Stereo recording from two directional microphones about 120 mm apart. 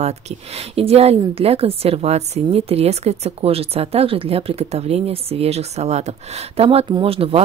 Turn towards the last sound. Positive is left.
turn(degrees=-50)  # may be behind; listen again after turning